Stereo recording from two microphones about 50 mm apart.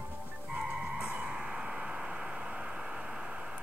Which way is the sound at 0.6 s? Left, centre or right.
Centre.